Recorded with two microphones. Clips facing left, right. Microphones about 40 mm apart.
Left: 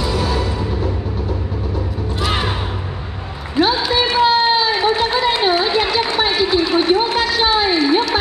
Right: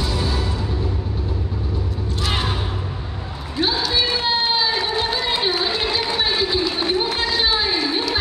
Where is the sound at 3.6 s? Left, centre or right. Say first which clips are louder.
Left 5 dB; left.